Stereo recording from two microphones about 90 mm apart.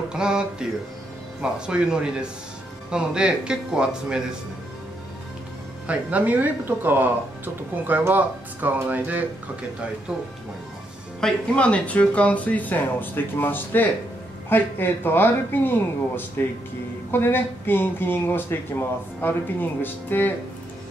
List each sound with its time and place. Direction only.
0.1 s speech: 10° right (ahead or behind)
5.9 s speech: 15° right (ahead or behind)
11.1 s speech: 10° left (ahead or behind)